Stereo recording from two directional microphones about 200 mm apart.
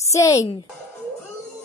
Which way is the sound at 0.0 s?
15° left (ahead or behind).